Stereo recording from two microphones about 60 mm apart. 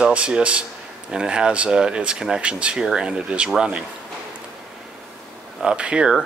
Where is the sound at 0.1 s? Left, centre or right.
Right.